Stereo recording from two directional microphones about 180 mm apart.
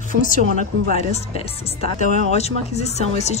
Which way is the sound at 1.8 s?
40° left (ahead or behind).